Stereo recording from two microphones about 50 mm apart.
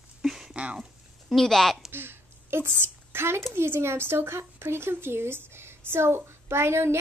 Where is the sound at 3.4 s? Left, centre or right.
Right.